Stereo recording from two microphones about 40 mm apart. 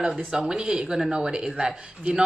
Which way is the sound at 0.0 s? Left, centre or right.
Centre.